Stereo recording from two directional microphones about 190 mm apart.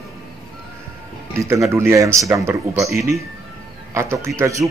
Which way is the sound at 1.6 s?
15° right (ahead or behind).